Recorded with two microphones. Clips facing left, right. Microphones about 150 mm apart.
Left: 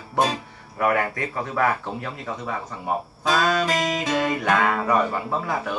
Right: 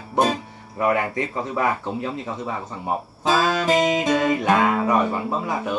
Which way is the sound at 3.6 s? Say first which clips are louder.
Right 5 dB; 25° right (ahead or behind).